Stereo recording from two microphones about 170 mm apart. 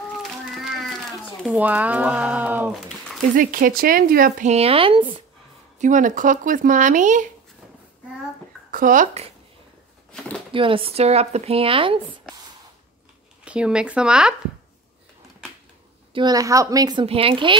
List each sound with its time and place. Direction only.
0.2 s cat: centre (ahead or behind)
3.3 s speech: 55° right (ahead or behind); by 5.0 s 30° right (ahead or behind)
5.8 s speech: 50° right (ahead or behind)
8.7 s speech: 50° right (ahead or behind)
10.5 s speech: 30° right (ahead or behind)
13.5 s speech: 5° right (ahead or behind)
16.1 s a woman's voice: 25° right (ahead or behind)
17.0 s speech: 35° right (ahead or behind)